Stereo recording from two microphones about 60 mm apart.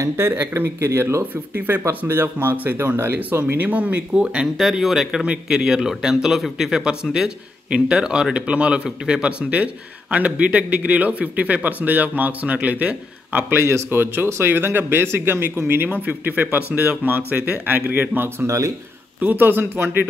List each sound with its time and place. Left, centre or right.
0.2 s speech: right
1.3 s speech: right
3.5 s a man's voice: right
4.6 s a man's voice: centre; by 13.5 s right
13.6 s speech: right
16.1 s a man's voice: right